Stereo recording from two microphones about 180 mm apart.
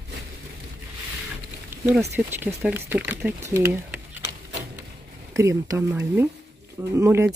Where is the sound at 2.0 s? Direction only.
10° right (ahead or behind).